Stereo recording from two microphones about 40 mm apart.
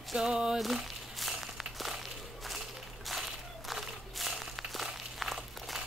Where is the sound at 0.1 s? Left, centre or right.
Centre.